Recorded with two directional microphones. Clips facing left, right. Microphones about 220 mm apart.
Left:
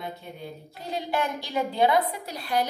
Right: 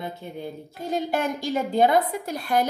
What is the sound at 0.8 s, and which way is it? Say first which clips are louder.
A woman's voice: right 3 dB; 45° right (ahead or behind).